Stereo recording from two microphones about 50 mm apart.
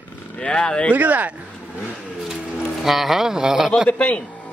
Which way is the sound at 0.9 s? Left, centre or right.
Right.